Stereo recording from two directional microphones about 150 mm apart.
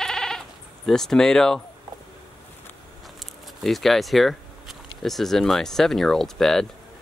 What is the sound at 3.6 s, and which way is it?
Speech, centre (ahead or behind).